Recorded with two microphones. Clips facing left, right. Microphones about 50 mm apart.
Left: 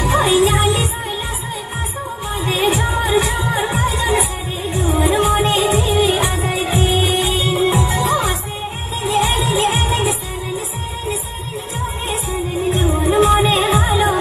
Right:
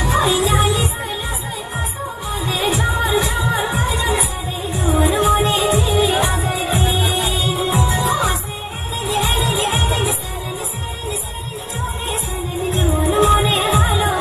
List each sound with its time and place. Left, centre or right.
0.0 s music: left
2.3 s music: left
6.1 s music: right
6.4 s music: left
9.1 s music: left
12.7 s music: left